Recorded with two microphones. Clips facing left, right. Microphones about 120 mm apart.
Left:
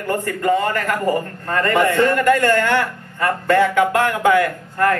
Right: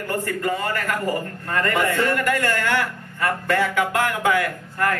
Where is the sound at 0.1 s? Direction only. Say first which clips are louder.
Left 6 dB; 30° left (ahead or behind).